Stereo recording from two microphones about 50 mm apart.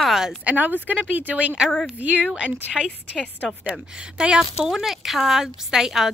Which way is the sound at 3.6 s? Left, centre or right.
Right.